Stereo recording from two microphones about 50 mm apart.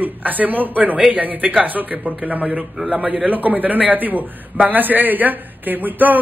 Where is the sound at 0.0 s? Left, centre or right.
Right.